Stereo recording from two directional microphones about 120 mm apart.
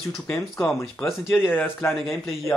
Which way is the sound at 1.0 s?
25° left (ahead or behind).